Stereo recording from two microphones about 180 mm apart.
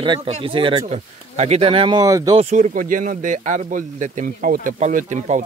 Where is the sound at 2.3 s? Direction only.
40° right (ahead or behind).